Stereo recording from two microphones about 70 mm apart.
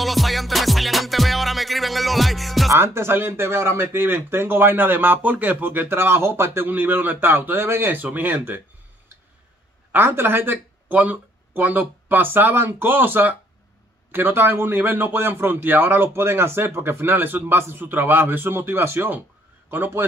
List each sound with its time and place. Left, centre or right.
0.0 s music: centre
2.7 s speech: right
9.9 s a man's voice: right